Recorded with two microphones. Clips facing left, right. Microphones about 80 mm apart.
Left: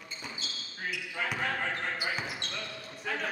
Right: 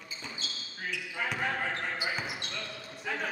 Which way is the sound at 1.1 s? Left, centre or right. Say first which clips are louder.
Even; centre.